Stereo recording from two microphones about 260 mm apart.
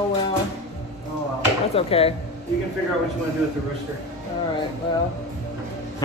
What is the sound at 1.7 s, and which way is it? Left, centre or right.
Speech, left.